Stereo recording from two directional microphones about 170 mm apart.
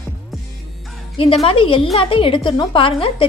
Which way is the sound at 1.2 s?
30° left (ahead or behind).